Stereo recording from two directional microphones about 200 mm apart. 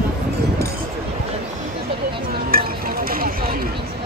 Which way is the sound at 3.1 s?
45° right (ahead or behind).